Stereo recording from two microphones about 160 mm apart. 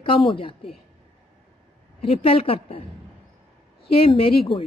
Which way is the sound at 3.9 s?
35° left (ahead or behind).